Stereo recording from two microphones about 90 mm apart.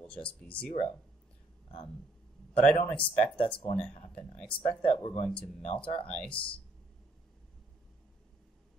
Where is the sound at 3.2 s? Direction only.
15° left (ahead or behind).